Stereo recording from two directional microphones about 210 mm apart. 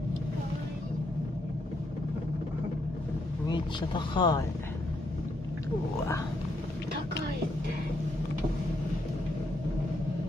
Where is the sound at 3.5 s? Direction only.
20° left (ahead or behind).